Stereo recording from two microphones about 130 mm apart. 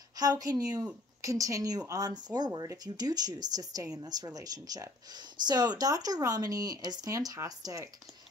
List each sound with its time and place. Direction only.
0.1 s speech: 30° right (ahead or behind)